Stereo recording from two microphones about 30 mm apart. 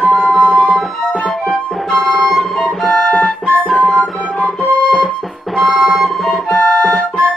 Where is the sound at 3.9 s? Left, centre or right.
Left.